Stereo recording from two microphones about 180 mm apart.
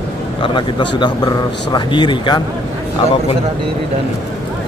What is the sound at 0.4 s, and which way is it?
Speech, 25° left (ahead or behind).